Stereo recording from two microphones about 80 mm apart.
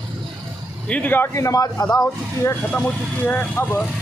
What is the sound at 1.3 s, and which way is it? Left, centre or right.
Speech, left.